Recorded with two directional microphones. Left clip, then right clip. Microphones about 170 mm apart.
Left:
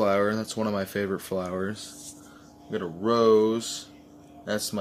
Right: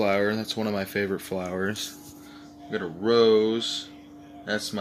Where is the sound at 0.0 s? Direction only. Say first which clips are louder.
Even; 20° left (ahead or behind).